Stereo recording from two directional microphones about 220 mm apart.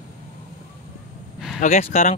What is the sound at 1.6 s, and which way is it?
Speech, 35° left (ahead or behind).